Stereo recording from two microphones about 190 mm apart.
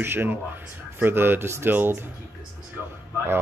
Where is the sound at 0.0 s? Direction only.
10° right (ahead or behind).